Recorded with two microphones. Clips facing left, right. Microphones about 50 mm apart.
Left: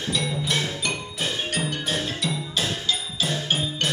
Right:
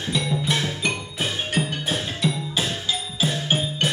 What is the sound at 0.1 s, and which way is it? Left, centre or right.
Music, centre.